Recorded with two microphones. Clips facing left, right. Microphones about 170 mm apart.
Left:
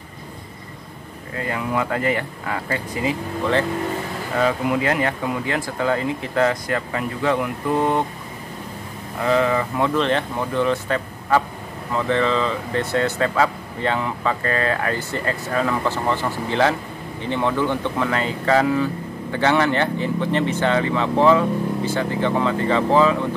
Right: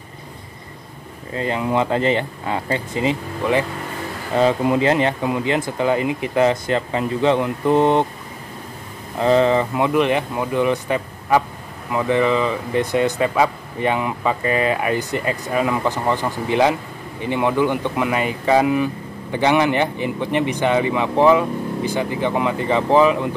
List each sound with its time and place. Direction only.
1.3 s speech: 25° right (ahead or behind)
4.4 s speech: 25° right (ahead or behind)
9.2 s speech: 30° right (ahead or behind)